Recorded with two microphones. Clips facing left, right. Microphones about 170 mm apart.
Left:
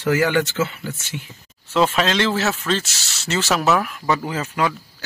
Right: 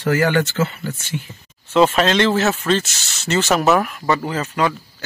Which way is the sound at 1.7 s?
Centre (ahead or behind).